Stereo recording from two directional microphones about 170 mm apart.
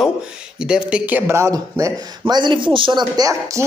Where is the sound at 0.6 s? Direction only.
5° right (ahead or behind).